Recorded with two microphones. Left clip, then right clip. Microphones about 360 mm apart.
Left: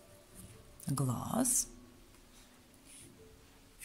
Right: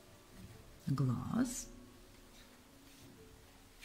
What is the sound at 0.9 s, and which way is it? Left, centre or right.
Speech, centre.